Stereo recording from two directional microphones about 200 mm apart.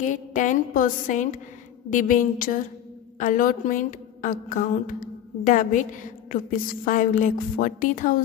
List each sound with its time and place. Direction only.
0.0 s a woman's voice: 40° left (ahead or behind)